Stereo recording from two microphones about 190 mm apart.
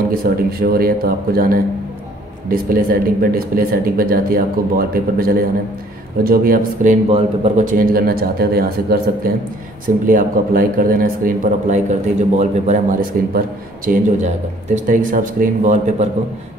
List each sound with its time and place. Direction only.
0.1 s a man's voice: 50° right (ahead or behind)